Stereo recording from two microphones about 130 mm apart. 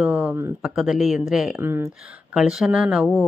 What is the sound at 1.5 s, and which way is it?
Speech, 20° right (ahead or behind).